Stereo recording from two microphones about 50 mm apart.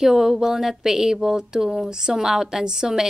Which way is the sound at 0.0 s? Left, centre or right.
Centre.